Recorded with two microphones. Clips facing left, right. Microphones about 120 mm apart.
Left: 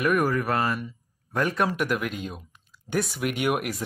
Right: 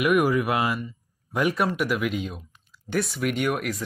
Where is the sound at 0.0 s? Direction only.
10° right (ahead or behind).